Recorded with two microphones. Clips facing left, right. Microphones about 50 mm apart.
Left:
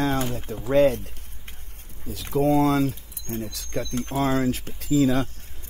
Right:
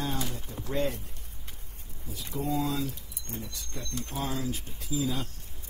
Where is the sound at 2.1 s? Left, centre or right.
Left.